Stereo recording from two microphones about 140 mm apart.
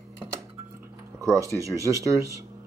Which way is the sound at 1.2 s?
25° right (ahead or behind).